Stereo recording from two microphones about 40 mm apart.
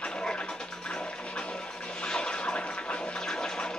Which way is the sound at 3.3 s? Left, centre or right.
Centre.